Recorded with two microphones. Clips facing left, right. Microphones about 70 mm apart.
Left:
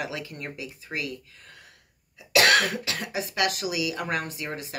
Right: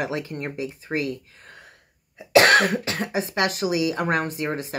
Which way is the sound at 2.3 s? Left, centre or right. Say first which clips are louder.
Right 5 dB; right.